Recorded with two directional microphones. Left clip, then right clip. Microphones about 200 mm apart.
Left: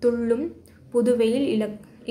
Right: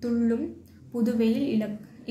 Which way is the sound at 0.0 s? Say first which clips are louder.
Left 6 dB; 30° left (ahead or behind).